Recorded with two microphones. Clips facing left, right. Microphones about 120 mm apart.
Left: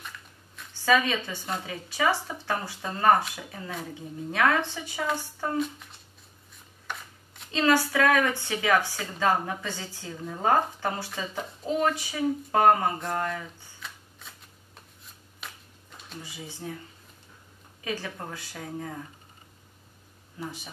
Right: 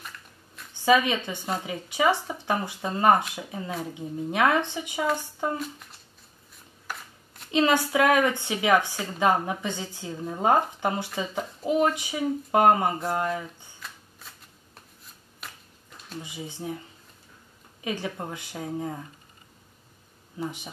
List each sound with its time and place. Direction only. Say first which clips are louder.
0.7 s a woman's voice: right 3 dB; 20° right (ahead or behind)
5.6 s speech: left 6 dB; centre (ahead or behind)
6.9 s shuffling cards: even; 5° right (ahead or behind)
7.5 s a woman's voice: right 1 dB; 20° right (ahead or behind)
13.7 s shuffling cards: even; centre (ahead or behind)
15.4 s a sound: even; centre (ahead or behind)
16.2 s speech: right 4 dB; 20° right (ahead or behind)
17.8 s speech: right 3 dB; 20° right (ahead or behind)
20.3 s a woman's voice: right 4 dB; 20° right (ahead or behind)